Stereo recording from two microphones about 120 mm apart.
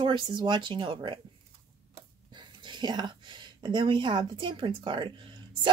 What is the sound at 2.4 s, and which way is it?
A woman's voice, 40° right (ahead or behind).